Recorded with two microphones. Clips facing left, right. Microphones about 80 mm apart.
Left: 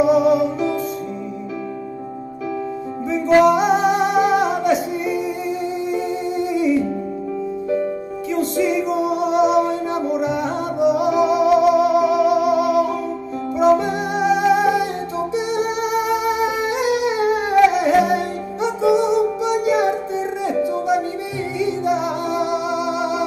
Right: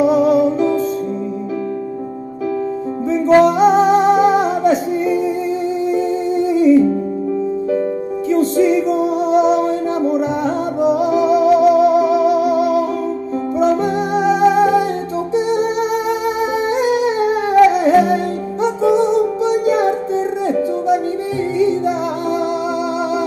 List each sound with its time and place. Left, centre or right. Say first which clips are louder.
0.0 s music: right 2 dB; right
3.1 s music: right 2 dB; right
8.3 s music: right 6 dB; right
21.5 s music: right 4 dB; right